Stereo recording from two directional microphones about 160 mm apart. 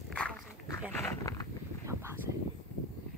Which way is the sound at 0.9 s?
15° left (ahead or behind).